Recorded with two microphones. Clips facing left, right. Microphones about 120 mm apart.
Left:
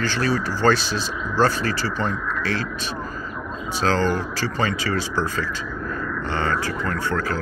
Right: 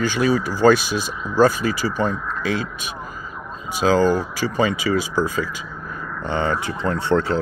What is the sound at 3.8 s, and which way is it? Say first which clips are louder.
Speech: right 4 dB; 10° right (ahead or behind).